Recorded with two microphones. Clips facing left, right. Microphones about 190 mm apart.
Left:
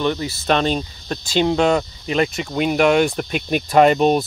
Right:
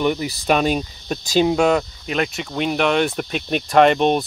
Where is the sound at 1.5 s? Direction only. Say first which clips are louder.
Even; 5° right (ahead or behind).